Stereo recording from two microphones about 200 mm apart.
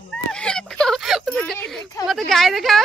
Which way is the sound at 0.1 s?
5° left (ahead or behind).